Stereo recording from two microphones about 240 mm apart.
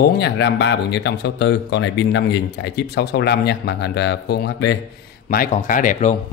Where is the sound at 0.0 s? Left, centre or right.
Left.